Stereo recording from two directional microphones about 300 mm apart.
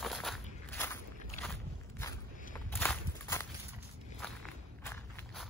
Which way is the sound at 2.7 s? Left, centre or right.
Centre.